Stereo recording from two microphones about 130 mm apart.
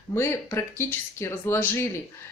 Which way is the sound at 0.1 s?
20° left (ahead or behind).